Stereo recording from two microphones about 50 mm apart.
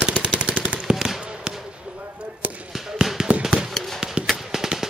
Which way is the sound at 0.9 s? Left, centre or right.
Centre.